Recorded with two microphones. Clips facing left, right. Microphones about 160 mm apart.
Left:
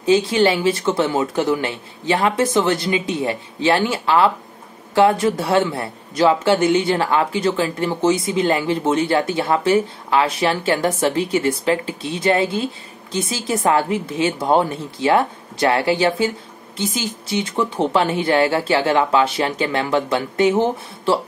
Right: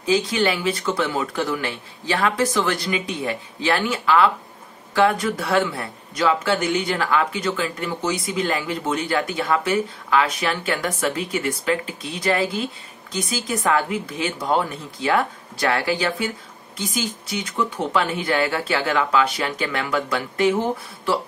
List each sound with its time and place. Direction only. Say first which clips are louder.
0.0 s speech: left 5 dB; 30° left (ahead or behind)